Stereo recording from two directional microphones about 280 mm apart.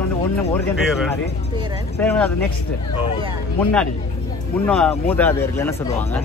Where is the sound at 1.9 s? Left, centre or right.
Centre.